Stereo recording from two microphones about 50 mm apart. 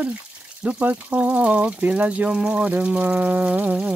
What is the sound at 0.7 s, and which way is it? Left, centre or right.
Speech, right.